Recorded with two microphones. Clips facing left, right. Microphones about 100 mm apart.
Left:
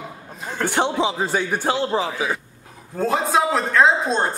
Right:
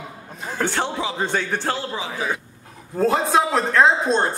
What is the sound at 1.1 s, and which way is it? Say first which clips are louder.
Speech: left 1 dB; 5° left (ahead or behind).